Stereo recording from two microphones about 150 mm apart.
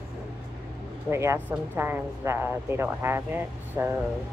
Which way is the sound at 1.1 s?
20° right (ahead or behind).